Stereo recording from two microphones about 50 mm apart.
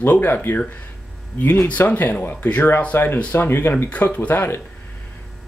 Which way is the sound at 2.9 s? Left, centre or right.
Left.